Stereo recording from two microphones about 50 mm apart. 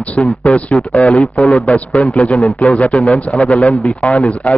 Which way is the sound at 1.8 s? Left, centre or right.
Left.